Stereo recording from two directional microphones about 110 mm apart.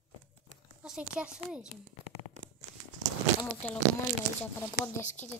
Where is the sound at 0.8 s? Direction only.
5° right (ahead or behind).